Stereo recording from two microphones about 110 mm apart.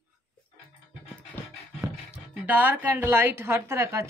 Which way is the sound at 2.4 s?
15° right (ahead or behind).